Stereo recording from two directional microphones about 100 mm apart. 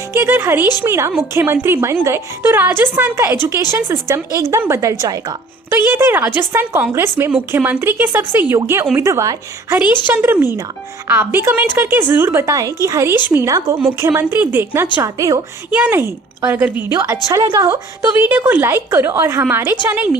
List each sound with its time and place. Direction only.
0.1 s speech: 25° right (ahead or behind)
10.0 s speech: 20° right (ahead or behind)
15.1 s a woman's voice: 35° right (ahead or behind)
15.7 s a woman's voice: 10° right (ahead or behind)
16.0 s speech: 25° right (ahead or behind)
17.3 s a woman's voice: 35° right (ahead or behind)
18.2 s a woman's voice: 15° right (ahead or behind)